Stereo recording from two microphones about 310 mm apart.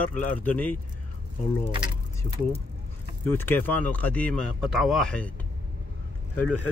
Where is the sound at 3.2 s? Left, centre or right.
Centre.